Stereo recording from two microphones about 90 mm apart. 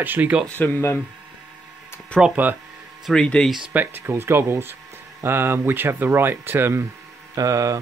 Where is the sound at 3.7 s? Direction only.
25° right (ahead or behind).